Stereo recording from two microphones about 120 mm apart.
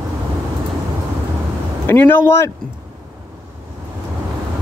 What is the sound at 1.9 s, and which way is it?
Speech, 15° left (ahead or behind).